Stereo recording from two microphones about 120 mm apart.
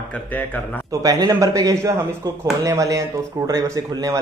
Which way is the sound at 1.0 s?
30° right (ahead or behind).